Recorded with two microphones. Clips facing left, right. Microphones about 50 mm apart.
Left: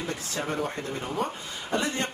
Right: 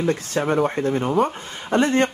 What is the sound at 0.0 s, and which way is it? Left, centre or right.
Speech, right.